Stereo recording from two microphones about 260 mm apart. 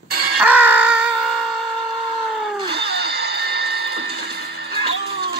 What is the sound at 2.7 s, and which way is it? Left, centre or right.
Music, right.